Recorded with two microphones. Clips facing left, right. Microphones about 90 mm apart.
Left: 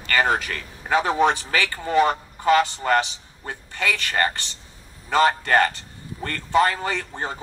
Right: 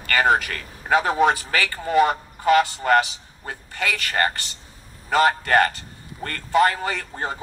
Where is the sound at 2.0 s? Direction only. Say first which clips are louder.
Right 1 dB; 30° left (ahead or behind).